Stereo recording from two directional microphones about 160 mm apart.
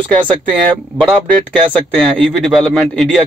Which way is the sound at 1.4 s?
5° left (ahead or behind).